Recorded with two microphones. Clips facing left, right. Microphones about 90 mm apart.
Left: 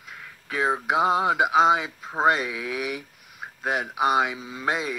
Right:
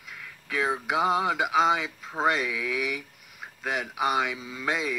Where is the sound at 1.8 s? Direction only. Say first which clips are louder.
Left 4 dB; 40° left (ahead or behind).